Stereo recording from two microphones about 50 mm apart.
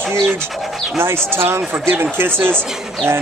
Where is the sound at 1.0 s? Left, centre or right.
Right.